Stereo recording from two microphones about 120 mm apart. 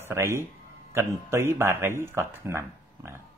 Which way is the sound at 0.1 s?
20° right (ahead or behind).